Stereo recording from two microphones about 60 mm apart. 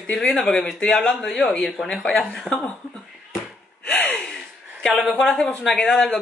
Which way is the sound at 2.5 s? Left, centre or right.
Centre.